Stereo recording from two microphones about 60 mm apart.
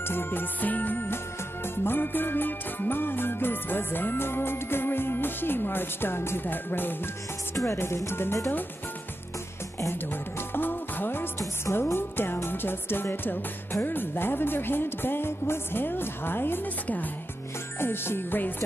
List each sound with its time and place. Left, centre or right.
0.1 s music: left
7.5 s speech: left
10.5 s music: left
11.3 s speech: left
11.9 s music: left
17.7 s music: left